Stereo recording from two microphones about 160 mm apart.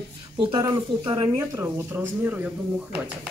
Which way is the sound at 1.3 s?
15° right (ahead or behind).